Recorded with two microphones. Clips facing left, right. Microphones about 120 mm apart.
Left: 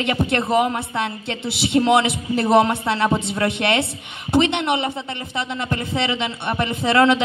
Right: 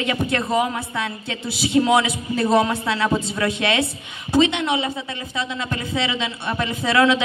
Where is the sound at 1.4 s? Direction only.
65° left (ahead or behind).